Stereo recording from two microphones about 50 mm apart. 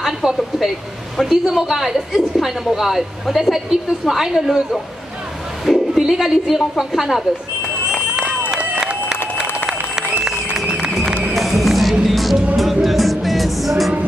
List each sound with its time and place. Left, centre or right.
0.0 s a woman's voice: centre
5.7 s speech: centre
8.2 s applause: right
11.3 s music: centre